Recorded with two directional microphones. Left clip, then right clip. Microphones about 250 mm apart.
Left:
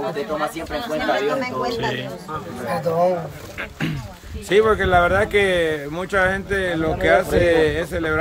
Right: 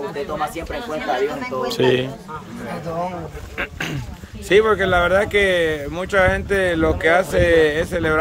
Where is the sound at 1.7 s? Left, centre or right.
Right.